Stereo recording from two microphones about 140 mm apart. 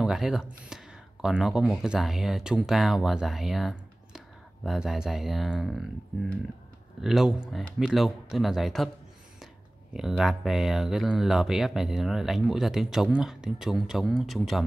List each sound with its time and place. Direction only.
0.0 s speech: 5° right (ahead or behind)
7.0 s speech: 5° right (ahead or behind)
9.9 s speech: centre (ahead or behind)